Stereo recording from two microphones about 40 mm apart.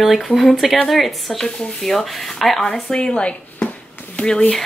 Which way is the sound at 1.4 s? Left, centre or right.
Centre.